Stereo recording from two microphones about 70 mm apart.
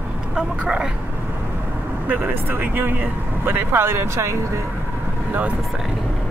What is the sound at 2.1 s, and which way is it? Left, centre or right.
Speech, right.